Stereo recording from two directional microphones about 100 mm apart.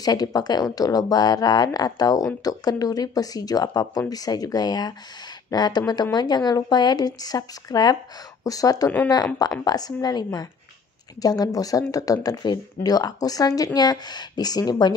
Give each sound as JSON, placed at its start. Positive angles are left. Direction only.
{"t": 0.0, "sound": "speech", "side_deg": 40}